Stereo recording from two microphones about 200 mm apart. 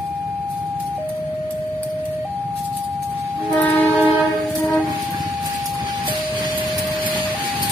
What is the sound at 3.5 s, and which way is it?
Music, 5° left (ahead or behind).